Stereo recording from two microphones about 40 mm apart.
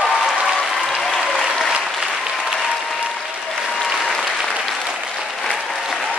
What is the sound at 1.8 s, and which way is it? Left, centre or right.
Applause, centre.